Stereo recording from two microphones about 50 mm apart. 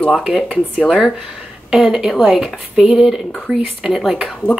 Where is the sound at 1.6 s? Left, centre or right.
Centre.